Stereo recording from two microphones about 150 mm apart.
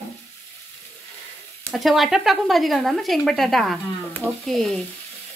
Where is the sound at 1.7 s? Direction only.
Centre (ahead or behind).